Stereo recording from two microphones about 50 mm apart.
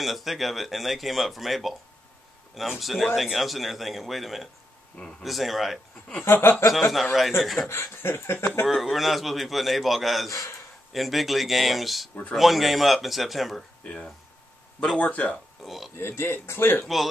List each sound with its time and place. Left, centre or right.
0.0 s speech: centre
2.8 s speech: centre
6.2 s speech: left
6.7 s speech: centre
7.6 s speech: left
8.6 s speech: centre
15.0 s speech: left
15.3 s speech: centre
16.0 s speech: left
16.8 s speech: centre